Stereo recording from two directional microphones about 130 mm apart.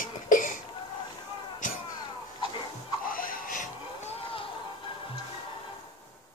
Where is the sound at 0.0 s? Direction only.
90° left.